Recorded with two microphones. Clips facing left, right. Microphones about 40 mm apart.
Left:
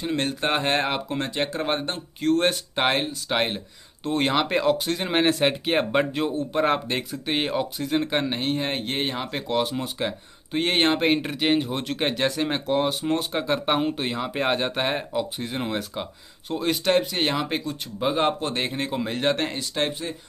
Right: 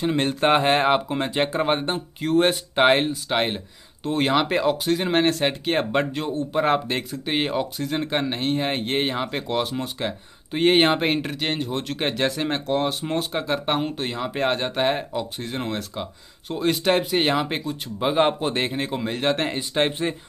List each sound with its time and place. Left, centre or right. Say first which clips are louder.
0.0 s speech: right 4 dB; centre
19.7 s speech: right 4 dB; right